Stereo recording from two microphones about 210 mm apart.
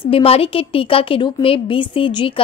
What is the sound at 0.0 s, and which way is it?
A woman's voice, 25° left (ahead or behind).